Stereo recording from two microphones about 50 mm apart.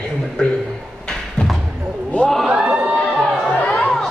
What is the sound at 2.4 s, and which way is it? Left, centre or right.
Crowd, centre.